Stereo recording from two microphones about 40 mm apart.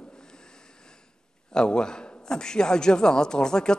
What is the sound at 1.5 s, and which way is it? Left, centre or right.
A man's voice, centre.